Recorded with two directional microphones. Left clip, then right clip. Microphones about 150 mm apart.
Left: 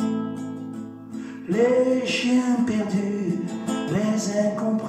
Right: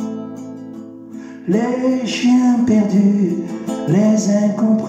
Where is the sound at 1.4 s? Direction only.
45° right (ahead or behind).